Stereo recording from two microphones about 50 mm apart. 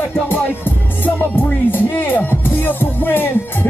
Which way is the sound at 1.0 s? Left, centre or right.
Left.